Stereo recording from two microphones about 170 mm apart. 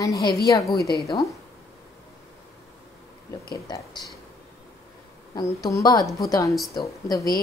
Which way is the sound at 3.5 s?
25° left (ahead or behind).